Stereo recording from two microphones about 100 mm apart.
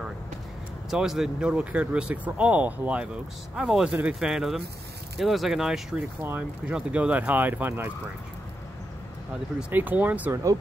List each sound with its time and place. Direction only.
0.8 s speech: 5° right (ahead or behind); by 7.9 s 20° right (ahead or behind)
9.6 s speech: 20° right (ahead or behind)
10.3 s speech: 35° right (ahead or behind)